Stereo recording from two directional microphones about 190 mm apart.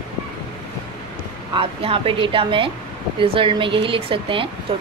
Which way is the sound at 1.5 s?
30° right (ahead or behind).